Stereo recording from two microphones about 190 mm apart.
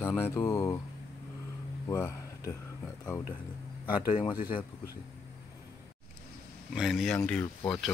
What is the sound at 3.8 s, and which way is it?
Speech, 25° left (ahead or behind).